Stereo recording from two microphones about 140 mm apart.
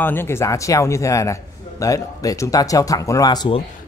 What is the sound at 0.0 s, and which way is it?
A man's voice, 15° left (ahead or behind).